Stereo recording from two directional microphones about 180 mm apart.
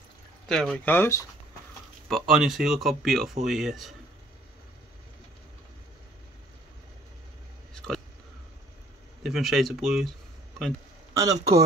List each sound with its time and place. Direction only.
0.5 s speech: 5° left (ahead or behind)
2.0 s speech: centre (ahead or behind)
7.7 s a sound: centre (ahead or behind)
9.2 s speech: centre (ahead or behind)
11.1 s speech: 20° right (ahead or behind)